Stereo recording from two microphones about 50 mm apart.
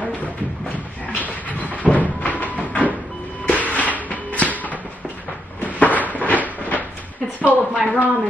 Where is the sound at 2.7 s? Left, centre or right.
Left.